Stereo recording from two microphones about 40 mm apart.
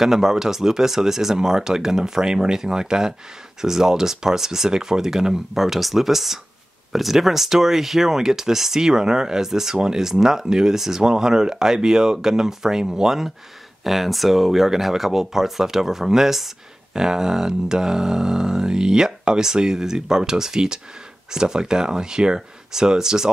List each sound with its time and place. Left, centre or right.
0.0 s speech: centre
5.6 s speech: centre